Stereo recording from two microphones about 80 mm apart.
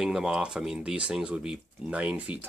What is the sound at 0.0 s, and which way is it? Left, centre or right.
Speech, centre.